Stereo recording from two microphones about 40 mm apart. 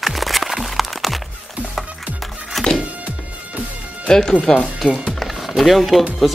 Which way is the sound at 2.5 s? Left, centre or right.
Centre.